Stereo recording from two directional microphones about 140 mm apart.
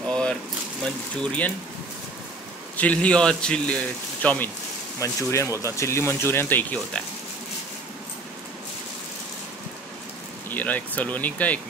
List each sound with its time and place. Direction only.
0.1 s a sound: 5° left (ahead or behind)
0.8 s a man's voice: 10° left (ahead or behind)
2.8 s a man's voice: 10° left (ahead or behind)
5.0 s speech: 20° left (ahead or behind)
10.5 s a man's voice: 10° left (ahead or behind)